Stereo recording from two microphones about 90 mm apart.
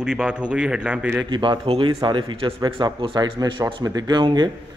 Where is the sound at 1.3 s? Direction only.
65° right (ahead or behind).